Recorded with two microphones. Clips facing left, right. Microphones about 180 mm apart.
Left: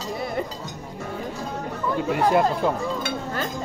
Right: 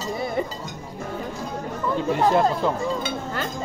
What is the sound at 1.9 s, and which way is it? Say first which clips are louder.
Speech: even; 5° left (ahead or behind).